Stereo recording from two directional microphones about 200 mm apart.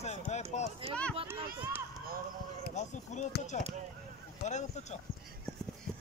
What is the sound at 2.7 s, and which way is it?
Speech, 35° left (ahead or behind).